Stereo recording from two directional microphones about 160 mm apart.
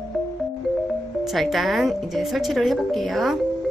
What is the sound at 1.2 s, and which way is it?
Speech, centre (ahead or behind).